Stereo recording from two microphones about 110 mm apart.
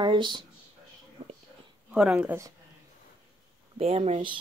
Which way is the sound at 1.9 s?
10° right (ahead or behind).